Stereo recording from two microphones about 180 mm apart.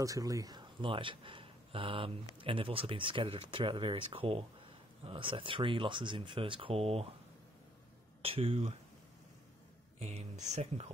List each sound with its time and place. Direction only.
0.0 s speech: 20° right (ahead or behind)
8.2 s speech: 30° right (ahead or behind)
9.9 s speech: 35° right (ahead or behind)